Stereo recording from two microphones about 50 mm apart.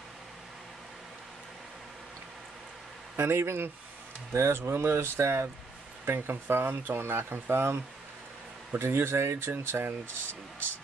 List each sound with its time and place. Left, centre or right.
3.2 s speech: right